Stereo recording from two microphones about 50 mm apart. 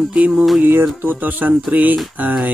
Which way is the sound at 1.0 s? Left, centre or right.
Right.